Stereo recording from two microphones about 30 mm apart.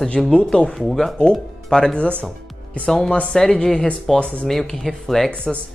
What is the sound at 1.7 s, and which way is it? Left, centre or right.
Speech, left.